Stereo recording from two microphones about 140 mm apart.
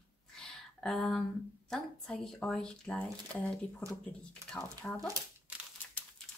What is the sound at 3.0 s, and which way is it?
Speech, 20° right (ahead or behind).